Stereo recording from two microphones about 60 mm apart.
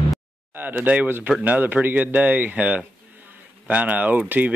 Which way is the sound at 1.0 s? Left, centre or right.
Right.